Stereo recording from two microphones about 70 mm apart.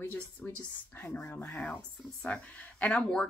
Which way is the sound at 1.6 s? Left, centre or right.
Centre.